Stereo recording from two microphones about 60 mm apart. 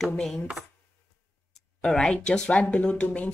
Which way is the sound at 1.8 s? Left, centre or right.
Centre.